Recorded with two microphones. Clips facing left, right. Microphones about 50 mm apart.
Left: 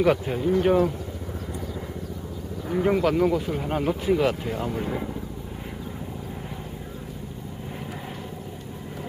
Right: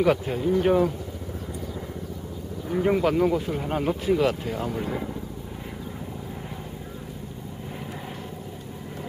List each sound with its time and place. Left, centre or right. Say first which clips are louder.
0.0 s speech: left 1 dB; centre
2.7 s speech: even; centre